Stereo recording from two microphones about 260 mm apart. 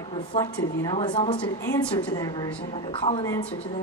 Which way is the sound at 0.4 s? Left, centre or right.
Centre.